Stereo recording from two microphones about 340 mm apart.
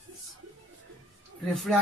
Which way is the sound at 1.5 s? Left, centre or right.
Centre.